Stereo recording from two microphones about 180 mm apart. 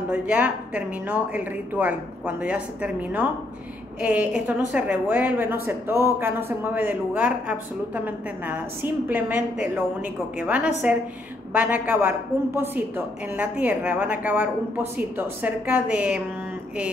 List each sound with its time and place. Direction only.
0.1 s a woman's voice: 10° right (ahead or behind)